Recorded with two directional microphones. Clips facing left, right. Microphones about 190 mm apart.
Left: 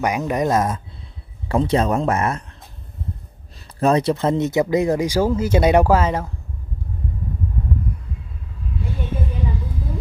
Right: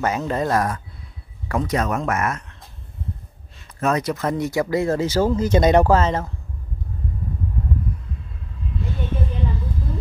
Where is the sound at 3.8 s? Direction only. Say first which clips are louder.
Left 4 dB; 30° left (ahead or behind); by 6.3 s 10° left (ahead or behind).